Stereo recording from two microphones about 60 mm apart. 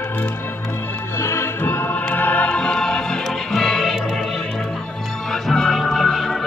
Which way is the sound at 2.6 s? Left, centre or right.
Centre.